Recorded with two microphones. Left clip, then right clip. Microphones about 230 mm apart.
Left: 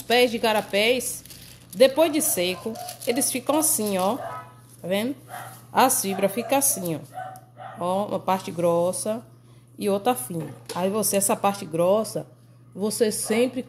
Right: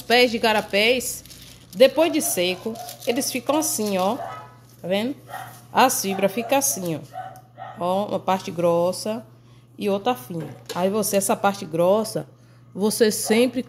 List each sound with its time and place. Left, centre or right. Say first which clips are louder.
0.0 s speech: right 2 dB; centre
10.7 s speech: right 3 dB; centre